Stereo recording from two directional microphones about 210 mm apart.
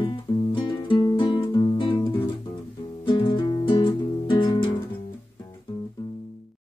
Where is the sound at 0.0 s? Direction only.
25° left (ahead or behind).